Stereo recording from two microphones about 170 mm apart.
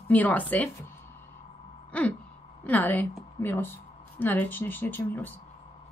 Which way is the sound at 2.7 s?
10° left (ahead or behind).